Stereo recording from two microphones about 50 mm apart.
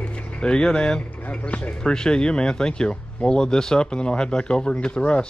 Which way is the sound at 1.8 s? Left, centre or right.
Centre.